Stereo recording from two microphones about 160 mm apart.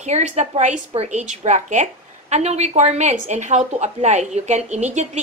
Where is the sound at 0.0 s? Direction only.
45° right (ahead or behind).